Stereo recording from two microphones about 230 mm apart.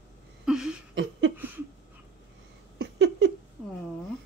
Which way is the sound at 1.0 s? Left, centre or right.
Right.